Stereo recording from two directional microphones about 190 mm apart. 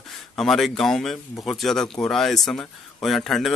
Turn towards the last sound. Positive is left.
turn(degrees=0)  # may be behind; listen again after turning